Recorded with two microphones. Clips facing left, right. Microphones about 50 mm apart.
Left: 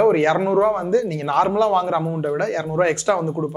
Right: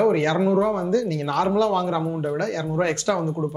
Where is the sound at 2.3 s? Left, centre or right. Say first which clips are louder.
Left 5 dB; left.